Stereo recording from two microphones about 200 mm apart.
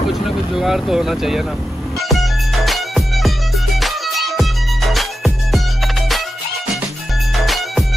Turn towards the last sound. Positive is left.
turn(degrees=0)  # may be behind; listen again after turning